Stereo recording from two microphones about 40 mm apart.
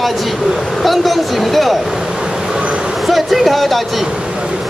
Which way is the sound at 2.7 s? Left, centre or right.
Centre.